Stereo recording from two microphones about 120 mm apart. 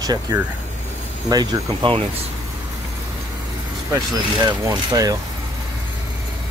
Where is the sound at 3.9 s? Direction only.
35° right (ahead or behind).